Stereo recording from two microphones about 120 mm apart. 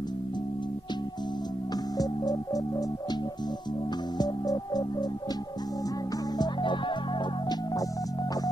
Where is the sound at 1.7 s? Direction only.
35° left (ahead or behind).